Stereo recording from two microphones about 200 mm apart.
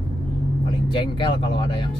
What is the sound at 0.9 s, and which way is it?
Speech, 25° left (ahead or behind).